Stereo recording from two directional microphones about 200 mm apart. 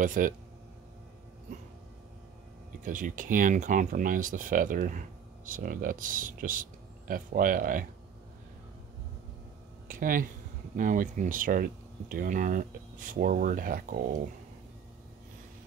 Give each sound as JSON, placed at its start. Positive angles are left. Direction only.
{"t": 0.0, "sound": "speech", "side_deg": -40}
{"t": 2.8, "sound": "speech", "side_deg": -40}
{"t": 9.8, "sound": "speech", "side_deg": -40}